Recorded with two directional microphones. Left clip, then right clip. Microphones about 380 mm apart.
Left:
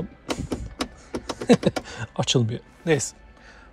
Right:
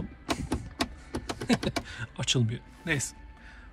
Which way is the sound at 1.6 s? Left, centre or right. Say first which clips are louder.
Left 7 dB; centre.